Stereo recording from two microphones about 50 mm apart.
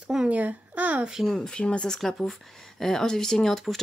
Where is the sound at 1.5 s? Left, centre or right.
Left.